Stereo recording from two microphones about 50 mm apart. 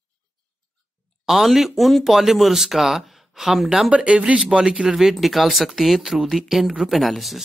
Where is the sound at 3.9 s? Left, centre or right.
Right; by 7.4 s centre.